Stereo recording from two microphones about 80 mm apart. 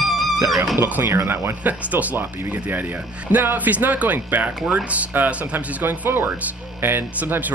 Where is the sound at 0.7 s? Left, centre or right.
Right.